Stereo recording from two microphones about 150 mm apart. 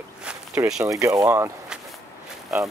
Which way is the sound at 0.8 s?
20° right (ahead or behind).